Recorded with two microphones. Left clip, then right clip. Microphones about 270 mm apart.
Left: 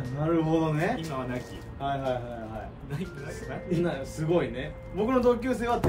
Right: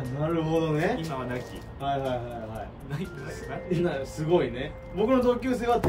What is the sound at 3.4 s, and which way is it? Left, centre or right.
A man's voice, centre.